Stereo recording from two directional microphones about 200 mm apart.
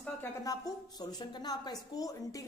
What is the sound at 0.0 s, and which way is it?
A woman's voice, 10° left (ahead or behind).